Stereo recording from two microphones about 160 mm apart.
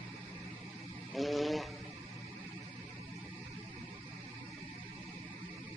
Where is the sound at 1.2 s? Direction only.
Centre (ahead or behind).